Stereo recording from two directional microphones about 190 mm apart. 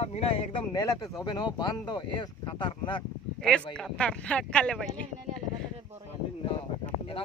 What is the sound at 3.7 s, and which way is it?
Speech, 5° left (ahead or behind).